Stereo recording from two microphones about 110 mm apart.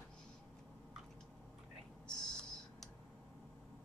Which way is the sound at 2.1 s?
5° left (ahead or behind).